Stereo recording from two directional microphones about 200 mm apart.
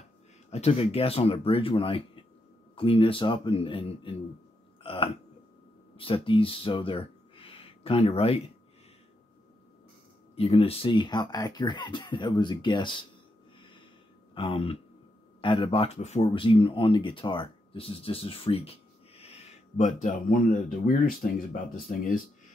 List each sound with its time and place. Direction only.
0.5 s speech: 30° left (ahead or behind)
4.8 s burping: 25° left (ahead or behind)
5.9 s speech: 25° left (ahead or behind)
10.3 s speech: 30° left (ahead or behind)
14.3 s speech: 25° left (ahead or behind); by 22.2 s 45° left (ahead or behind)